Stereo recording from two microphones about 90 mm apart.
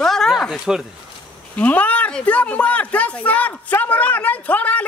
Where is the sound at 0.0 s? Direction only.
5° left (ahead or behind).